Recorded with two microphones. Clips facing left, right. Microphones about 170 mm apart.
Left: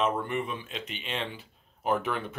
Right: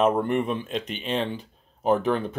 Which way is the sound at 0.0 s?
50° right (ahead or behind).